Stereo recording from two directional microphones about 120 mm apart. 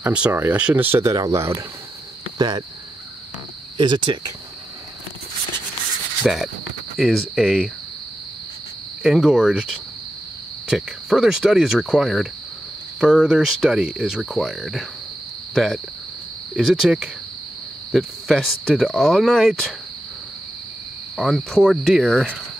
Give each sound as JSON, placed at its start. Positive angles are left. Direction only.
{"t": 0.0, "sound": "speech", "side_deg": -10}
{"t": 2.3, "sound": "speech", "side_deg": -35}
{"t": 3.7, "sound": "cricket", "side_deg": -40}
{"t": 6.2, "sound": "speech", "side_deg": 0}
{"t": 9.0, "sound": "speech", "side_deg": -5}
{"t": 21.2, "sound": "speech", "side_deg": 0}